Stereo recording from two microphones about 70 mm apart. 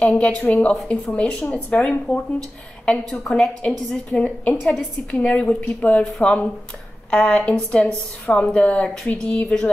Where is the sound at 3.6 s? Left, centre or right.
Centre.